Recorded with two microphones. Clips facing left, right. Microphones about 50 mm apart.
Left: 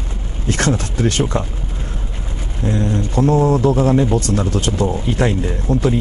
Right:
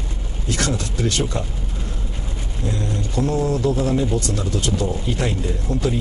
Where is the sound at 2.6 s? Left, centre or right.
Left.